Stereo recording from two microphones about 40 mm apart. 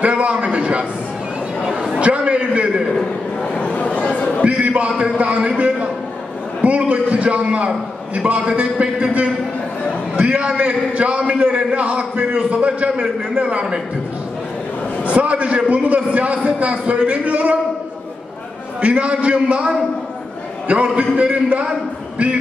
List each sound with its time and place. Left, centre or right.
0.0 s a man's voice: right
1.7 s chatter: centre
2.0 s a man's voice: right
3.5 s a sound: left
4.4 s a sound: right
5.2 s a man's voice: right
6.6 s a man's voice: right
10.4 s a man's voice: right
15.0 s a man's voice: right
18.8 s a man's voice: right